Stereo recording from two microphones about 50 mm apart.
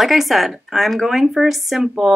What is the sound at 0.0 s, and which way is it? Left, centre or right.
Speech, centre.